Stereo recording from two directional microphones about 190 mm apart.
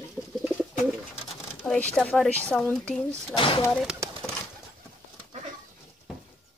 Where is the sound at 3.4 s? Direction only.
25° left (ahead or behind).